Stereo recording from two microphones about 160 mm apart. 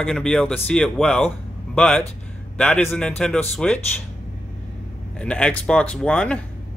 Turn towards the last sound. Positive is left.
turn(degrees=5)  # may be behind; listen again after turning